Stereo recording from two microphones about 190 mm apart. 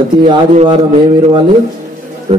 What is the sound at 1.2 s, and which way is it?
A man's voice, 25° right (ahead or behind).